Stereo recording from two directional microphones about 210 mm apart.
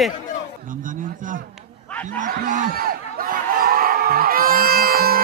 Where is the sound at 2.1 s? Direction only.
40° right (ahead or behind).